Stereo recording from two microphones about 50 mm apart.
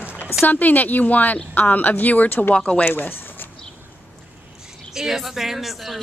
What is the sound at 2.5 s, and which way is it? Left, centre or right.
Speech, left.